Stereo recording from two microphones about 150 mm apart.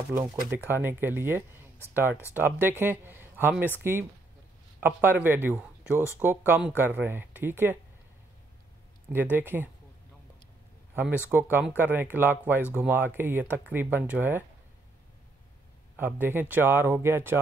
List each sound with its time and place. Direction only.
0.1 s speech: 15° right (ahead or behind)
4.7 s speech: 10° right (ahead or behind)
9.1 s speech: 15° right (ahead or behind)
11.5 s speech: 10° right (ahead or behind)
16.2 s speech: 15° right (ahead or behind)